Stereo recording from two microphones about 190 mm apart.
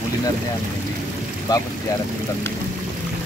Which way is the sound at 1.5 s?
20° left (ahead or behind).